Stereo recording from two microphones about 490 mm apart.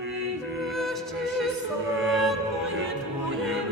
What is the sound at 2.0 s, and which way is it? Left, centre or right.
Music, centre.